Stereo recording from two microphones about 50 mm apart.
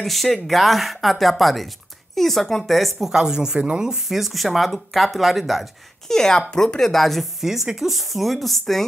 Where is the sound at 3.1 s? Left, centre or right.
Centre.